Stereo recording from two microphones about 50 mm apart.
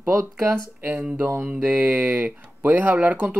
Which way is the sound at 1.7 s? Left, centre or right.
Right.